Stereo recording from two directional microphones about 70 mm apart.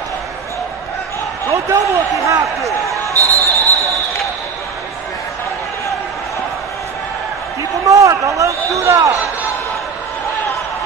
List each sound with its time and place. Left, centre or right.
1.7 s speech: right
2.9 s basketball bounce: right
7.9 s a sound: right